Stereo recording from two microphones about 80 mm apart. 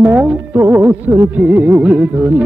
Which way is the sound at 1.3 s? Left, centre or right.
Right.